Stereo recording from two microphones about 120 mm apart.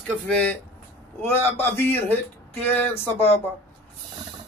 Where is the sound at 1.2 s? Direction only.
15° left (ahead or behind).